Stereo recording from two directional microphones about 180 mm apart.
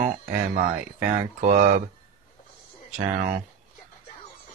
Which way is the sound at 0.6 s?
50° right (ahead or behind).